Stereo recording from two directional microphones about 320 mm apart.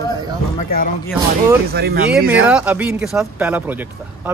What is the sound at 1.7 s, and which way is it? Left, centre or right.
Speech, right.